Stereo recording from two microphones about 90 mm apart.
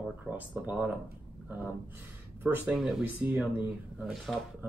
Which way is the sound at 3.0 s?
15° right (ahead or behind).